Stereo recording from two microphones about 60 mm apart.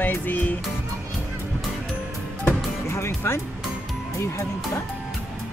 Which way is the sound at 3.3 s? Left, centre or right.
Left.